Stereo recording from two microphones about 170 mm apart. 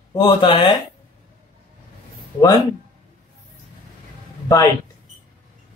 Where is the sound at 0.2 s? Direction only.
30° left (ahead or behind).